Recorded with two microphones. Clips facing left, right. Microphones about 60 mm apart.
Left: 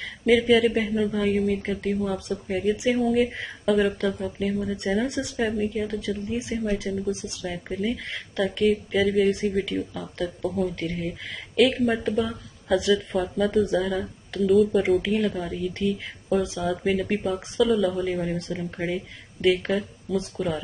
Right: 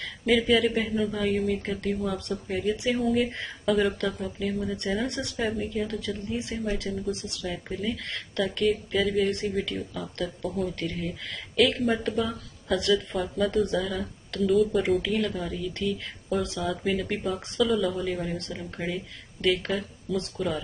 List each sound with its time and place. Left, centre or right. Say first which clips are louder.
0.2 s speech: left 4 dB; centre
3.0 s speech: left 3 dB; centre